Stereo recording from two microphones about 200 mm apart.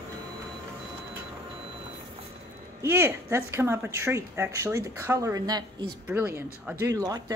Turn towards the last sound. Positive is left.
turn(degrees=-20)  # may be behind; listen again after turning